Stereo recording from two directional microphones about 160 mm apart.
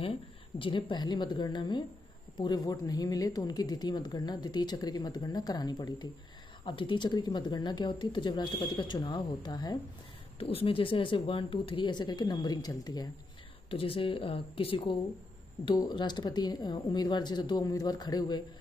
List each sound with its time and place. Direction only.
0.6 s speech: 30° left (ahead or behind)
10.4 s speech: 35° left (ahead or behind)
13.7 s speech: 35° left (ahead or behind)